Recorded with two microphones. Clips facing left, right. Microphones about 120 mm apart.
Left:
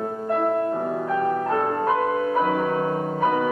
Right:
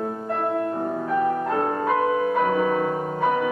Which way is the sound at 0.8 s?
Centre (ahead or behind).